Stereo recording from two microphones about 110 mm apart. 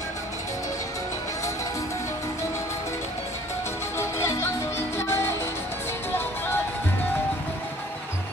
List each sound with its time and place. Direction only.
4.0 s music: 25° left (ahead or behind)